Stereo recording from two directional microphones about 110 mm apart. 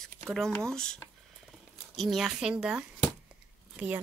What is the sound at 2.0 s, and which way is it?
Speech, centre (ahead or behind).